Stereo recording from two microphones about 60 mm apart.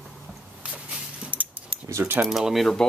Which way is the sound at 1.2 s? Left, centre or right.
Right.